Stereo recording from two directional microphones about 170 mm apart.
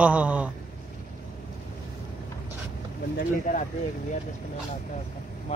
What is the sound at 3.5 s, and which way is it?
Speech, 50° left (ahead or behind).